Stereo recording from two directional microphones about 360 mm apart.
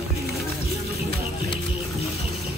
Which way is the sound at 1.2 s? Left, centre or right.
Centre.